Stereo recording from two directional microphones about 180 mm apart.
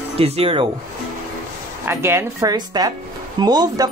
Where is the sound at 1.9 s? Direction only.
15° right (ahead or behind).